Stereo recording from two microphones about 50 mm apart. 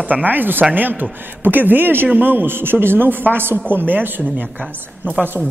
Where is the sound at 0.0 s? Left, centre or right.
Right.